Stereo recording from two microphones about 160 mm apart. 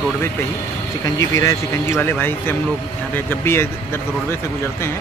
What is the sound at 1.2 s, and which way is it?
Speech, 20° left (ahead or behind).